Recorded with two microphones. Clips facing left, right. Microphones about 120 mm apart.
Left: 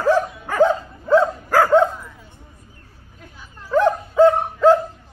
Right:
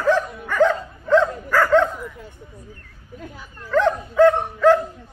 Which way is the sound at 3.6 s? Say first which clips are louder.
Left 2 dB; 10° left (ahead or behind).